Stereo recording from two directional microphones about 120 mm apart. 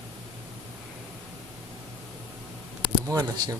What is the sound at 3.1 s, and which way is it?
Speech, 25° right (ahead or behind).